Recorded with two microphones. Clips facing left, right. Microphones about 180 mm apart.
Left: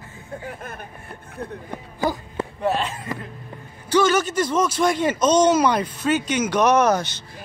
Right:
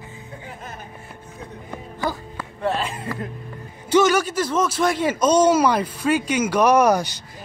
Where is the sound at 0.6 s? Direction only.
55° left (ahead or behind).